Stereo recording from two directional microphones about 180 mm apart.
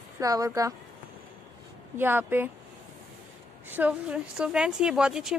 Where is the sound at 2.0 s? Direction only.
10° right (ahead or behind).